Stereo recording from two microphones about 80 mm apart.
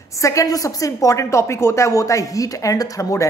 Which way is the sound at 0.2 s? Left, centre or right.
Left.